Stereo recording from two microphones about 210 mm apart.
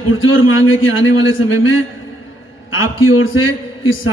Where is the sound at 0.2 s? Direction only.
70° left (ahead or behind).